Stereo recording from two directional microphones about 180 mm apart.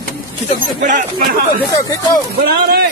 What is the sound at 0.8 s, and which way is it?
Speech, 45° right (ahead or behind).